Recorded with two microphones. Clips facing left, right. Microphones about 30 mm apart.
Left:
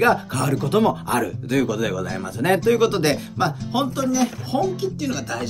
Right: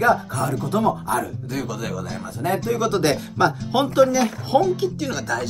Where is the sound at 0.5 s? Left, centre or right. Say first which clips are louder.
Left 3 dB; left.